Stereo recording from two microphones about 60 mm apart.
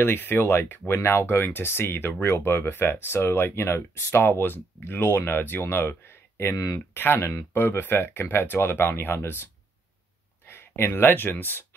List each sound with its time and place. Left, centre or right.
0.0 s speech: left
6.5 s speech: left
6.9 s speech: left
10.4 s speech: left